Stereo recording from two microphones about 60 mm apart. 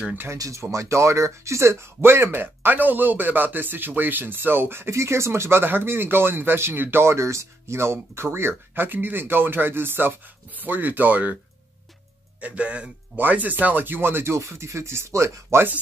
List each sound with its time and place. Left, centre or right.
0.6 s speech: right
12.4 s speech: right